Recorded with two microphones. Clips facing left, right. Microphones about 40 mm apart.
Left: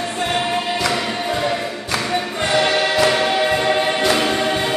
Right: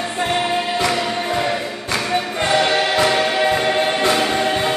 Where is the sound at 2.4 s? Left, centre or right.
Right.